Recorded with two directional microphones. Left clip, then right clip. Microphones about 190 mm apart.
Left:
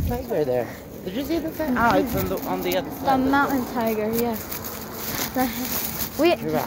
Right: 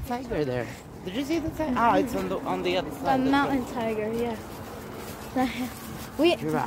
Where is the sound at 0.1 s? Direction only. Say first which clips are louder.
Left 5 dB; 40° right (ahead or behind).